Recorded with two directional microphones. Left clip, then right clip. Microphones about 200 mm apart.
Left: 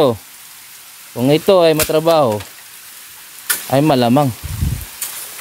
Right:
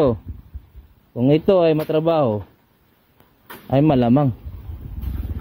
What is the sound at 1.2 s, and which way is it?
Speech, 15° left (ahead or behind).